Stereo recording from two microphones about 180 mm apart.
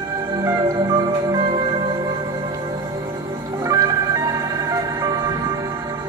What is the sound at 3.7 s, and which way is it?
Music, 20° right (ahead or behind).